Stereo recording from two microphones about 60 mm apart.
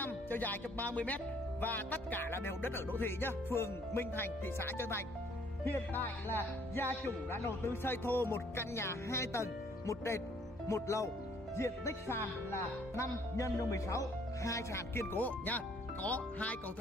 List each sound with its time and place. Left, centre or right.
0.0 s music: left
7.1 s speech: left
15.1 s speech: left